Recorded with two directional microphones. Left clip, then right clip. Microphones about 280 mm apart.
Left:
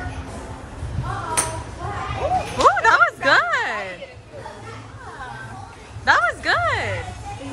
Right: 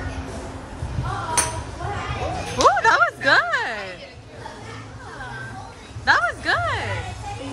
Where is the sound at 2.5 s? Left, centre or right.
Centre.